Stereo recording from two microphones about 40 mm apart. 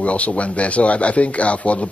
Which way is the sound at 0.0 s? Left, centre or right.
Left.